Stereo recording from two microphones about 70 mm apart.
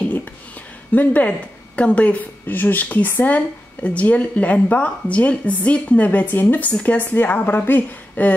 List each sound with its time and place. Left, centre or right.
0.9 s a woman's voice: left